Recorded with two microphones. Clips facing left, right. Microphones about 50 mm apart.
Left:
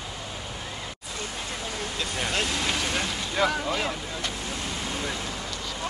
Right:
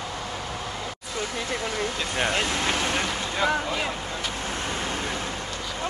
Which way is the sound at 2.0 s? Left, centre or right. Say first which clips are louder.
Right 2 dB; right.